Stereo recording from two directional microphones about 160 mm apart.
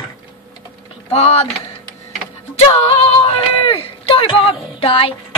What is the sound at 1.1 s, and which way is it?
Speech, 40° left (ahead or behind).